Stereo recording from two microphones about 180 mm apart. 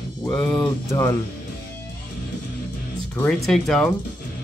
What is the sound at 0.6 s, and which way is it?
Speech, 15° left (ahead or behind).